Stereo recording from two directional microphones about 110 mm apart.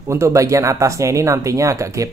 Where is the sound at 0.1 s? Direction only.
25° right (ahead or behind).